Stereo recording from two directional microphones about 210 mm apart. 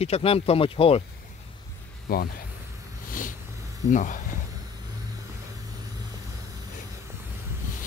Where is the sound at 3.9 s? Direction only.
40° left (ahead or behind).